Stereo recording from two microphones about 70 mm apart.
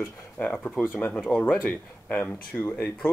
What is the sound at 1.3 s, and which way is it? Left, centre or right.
Speech, centre.